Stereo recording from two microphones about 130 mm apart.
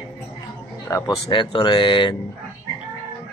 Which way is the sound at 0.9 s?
25° left (ahead or behind).